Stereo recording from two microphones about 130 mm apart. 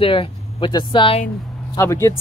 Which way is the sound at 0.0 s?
40° left (ahead or behind).